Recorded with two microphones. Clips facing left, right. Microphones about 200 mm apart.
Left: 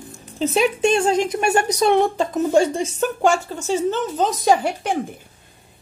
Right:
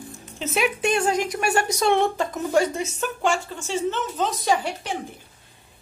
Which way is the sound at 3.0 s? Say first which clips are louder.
Left 6 dB; 45° left (ahead or behind).